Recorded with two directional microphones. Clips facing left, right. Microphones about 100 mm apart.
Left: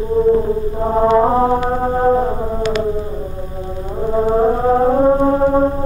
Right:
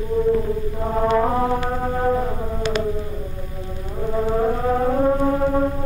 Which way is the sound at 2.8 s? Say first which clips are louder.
Left 5 dB; 30° left (ahead or behind).